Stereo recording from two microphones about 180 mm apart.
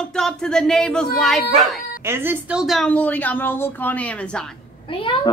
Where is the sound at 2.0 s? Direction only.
10° right (ahead or behind).